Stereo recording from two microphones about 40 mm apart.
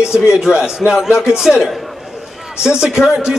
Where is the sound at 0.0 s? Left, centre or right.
Centre.